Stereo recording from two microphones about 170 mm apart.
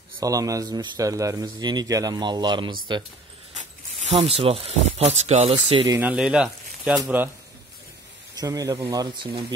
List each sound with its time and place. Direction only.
0.2 s speech: 20° right (ahead or behind)
4.1 s speech: 35° right (ahead or behind)
5.9 s speech: 5° right (ahead or behind)
8.4 s speech: 20° right (ahead or behind)